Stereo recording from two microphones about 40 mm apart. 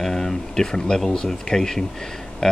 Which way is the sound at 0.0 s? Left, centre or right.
Centre.